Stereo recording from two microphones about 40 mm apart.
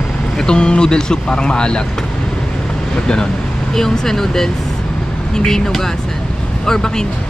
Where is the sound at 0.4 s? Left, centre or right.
Left.